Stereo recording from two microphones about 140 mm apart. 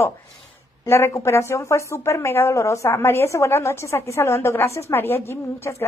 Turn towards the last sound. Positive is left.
turn(degrees=20)  # may be behind; listen again after turning